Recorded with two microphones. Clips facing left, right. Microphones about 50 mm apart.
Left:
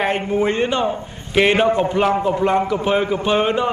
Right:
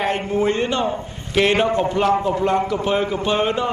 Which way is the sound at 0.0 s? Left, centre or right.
Centre.